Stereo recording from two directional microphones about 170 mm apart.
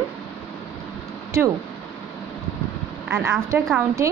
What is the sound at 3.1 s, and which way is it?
Speech, 10° right (ahead or behind).